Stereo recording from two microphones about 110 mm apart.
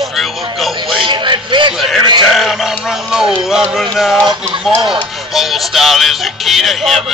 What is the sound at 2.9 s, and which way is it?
Music, 5° right (ahead or behind).